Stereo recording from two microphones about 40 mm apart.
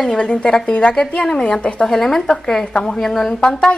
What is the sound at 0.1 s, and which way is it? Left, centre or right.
Speech, left.